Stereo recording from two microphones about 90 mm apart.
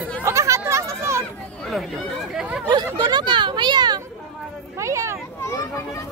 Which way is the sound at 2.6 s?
50° right (ahead or behind).